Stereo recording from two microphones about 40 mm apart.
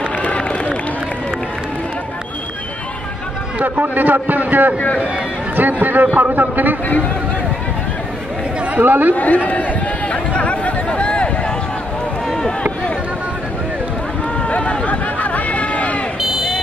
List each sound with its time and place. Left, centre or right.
0.2 s run: left
3.5 s a man's voice: right
8.7 s a man's voice: right
9.1 s a man's voice: left
9.5 s a sound: left
12.3 s a sound: centre
14.5 s run: left